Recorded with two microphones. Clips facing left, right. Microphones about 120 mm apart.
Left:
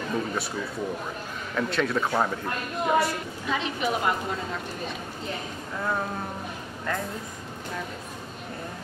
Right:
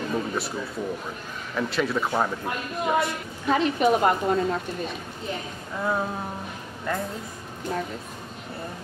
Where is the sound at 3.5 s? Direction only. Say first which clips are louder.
Right 7 dB; 45° right (ahead or behind).